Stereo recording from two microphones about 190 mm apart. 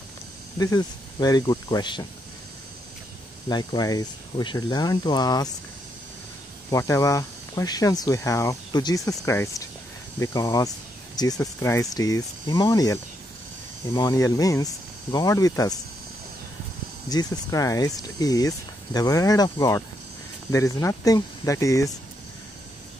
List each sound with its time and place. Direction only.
0.6 s speech: 20° left (ahead or behind)
3.4 s speech: 20° left (ahead or behind)
6.7 s speech: 15° left (ahead or behind)
17.1 s speech: 20° left (ahead or behind)